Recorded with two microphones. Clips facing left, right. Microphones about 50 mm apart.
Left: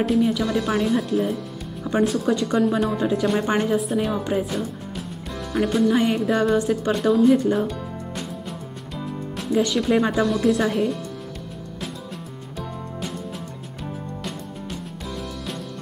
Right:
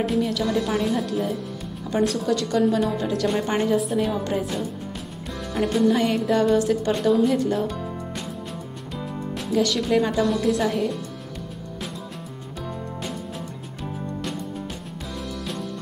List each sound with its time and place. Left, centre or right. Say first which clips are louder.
0.0 s a woman's voice: left 3 dB; centre
0.9 s a woman's voice: left 3 dB; centre
2.2 s speech: left 1 dB; centre
3.7 s a woman's voice: even; centre
9.5 s speech: left 1 dB; centre